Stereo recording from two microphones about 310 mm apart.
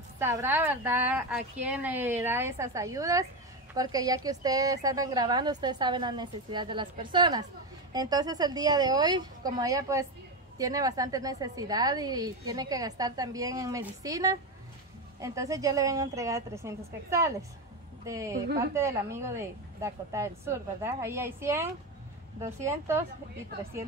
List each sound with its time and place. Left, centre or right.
0.2 s a woman's voice: centre